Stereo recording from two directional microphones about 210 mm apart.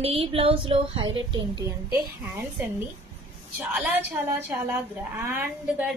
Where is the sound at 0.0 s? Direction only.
25° right (ahead or behind).